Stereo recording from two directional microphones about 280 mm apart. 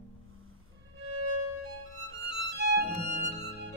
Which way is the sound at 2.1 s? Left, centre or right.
Right.